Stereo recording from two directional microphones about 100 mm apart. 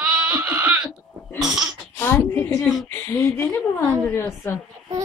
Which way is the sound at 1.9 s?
25° left (ahead or behind).